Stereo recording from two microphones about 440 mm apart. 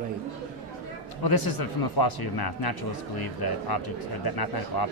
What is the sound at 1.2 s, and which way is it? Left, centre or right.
Speech, left.